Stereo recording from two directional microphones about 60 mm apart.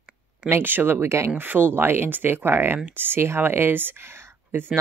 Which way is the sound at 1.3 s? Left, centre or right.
Right.